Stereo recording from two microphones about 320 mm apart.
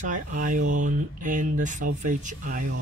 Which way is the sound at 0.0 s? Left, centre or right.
Right.